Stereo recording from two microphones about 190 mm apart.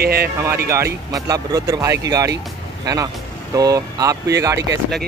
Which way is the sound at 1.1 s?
20° right (ahead or behind).